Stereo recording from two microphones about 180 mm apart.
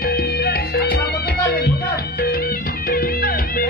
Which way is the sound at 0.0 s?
60° left (ahead or behind).